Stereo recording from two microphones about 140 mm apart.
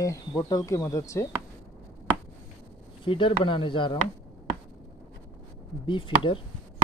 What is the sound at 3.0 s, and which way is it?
Speech, 35° left (ahead or behind).